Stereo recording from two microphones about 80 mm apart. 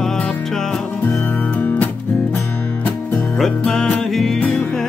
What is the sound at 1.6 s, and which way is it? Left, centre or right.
Music, left.